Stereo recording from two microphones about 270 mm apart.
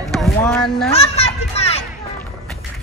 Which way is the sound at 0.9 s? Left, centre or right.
Left.